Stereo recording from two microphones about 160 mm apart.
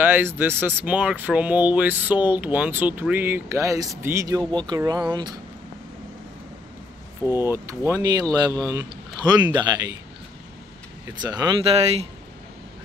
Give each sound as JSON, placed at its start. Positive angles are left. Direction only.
{"t": 0.0, "sound": "speech", "side_deg": -15}
{"t": 7.2, "sound": "speech", "side_deg": -15}
{"t": 11.1, "sound": "speech", "side_deg": -25}